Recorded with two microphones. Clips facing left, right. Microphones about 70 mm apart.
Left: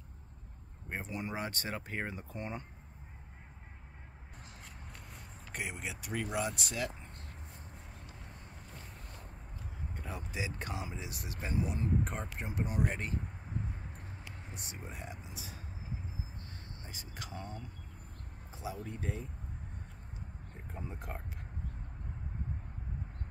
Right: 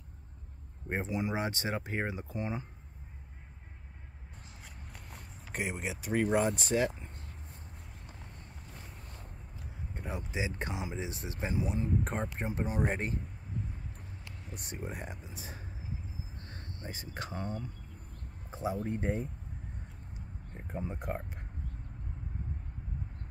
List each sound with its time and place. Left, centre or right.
1.0 s speech: centre
2.3 s speech: centre
5.5 s speech: centre
6.1 s speech: right
9.9 s speech: right
12.0 s speech: right
14.7 s speech: right
16.8 s speech: right
20.5 s speech: right